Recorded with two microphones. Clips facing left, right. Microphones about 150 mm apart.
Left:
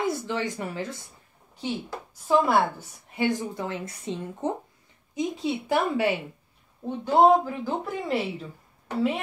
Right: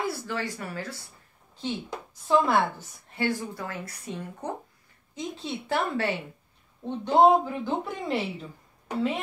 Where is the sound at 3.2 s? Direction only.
20° left (ahead or behind).